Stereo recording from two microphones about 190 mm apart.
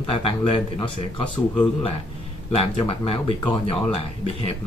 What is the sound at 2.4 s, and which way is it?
Speech, 30° left (ahead or behind).